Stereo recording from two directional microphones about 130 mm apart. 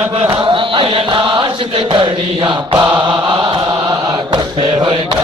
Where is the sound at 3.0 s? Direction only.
35° right (ahead or behind).